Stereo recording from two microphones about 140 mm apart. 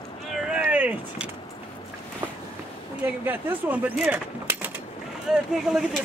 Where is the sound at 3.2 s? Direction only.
15° right (ahead or behind).